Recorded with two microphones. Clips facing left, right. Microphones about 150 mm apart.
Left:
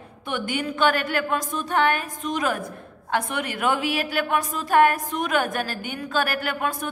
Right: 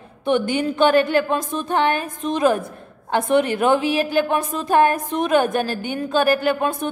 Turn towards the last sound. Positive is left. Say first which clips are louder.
# right 7 dB
turn(degrees=-25)  # may be behind; listen again after turning